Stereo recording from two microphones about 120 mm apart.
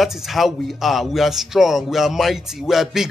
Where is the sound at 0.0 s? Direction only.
Centre (ahead or behind).